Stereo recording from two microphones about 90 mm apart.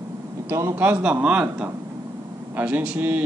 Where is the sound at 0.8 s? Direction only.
15° right (ahead or behind).